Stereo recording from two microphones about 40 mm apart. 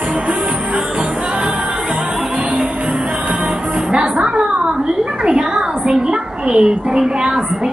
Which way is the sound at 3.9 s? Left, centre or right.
Right.